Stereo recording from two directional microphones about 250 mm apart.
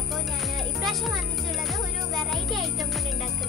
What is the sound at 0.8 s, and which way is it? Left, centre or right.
Music, centre.